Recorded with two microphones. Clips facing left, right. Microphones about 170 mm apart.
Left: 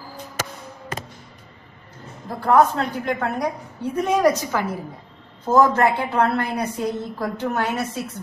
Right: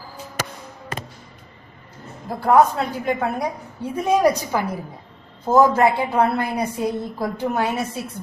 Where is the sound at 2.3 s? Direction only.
10° right (ahead or behind).